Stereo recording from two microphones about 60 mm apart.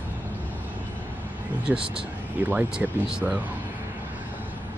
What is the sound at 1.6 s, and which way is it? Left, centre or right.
Speech, centre.